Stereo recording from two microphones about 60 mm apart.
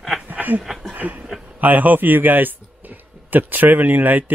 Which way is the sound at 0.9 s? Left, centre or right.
Right.